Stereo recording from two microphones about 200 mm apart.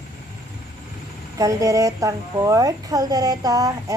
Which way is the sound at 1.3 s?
15° right (ahead or behind).